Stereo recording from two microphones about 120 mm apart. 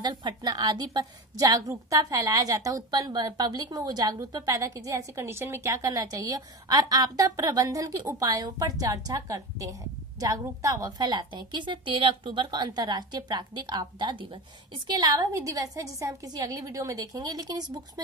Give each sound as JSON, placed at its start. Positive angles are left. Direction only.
{"t": 0.0, "sound": "a woman's voice", "side_deg": -40}